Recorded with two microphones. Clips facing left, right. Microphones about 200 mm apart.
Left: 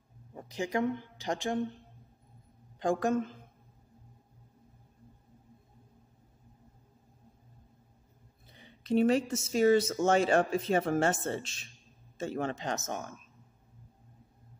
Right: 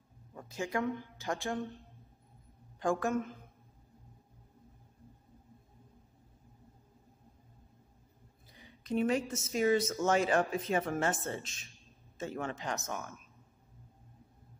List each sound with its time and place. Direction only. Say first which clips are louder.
0.3 s speech: left 3 dB; 20° left (ahead or behind)
2.8 s speech: left 3 dB; 20° left (ahead or behind)
8.5 s speech: left 5 dB; 30° left (ahead or behind)